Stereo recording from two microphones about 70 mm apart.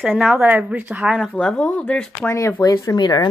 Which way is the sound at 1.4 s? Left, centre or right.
Centre.